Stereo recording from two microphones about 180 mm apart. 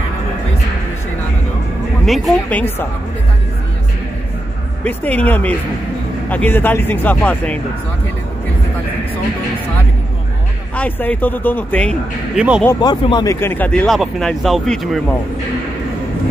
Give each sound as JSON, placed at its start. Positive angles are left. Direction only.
{"t": 2.0, "sound": "speech", "side_deg": 0}
{"t": 4.8, "sound": "speech", "side_deg": 10}
{"t": 10.8, "sound": "speech", "side_deg": 10}
{"t": 12.4, "sound": "speech", "side_deg": -5}
{"t": 12.8, "sound": "speech", "side_deg": 25}